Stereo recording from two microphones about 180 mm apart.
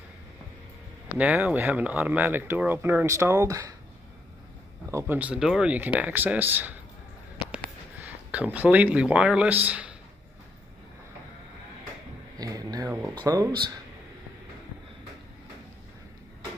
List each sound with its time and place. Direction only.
1.1 s speech: 10° right (ahead or behind)
4.9 s speech: 10° right (ahead or behind)
8.3 s speech: 10° right (ahead or behind)
12.4 s speech: 20° right (ahead or behind)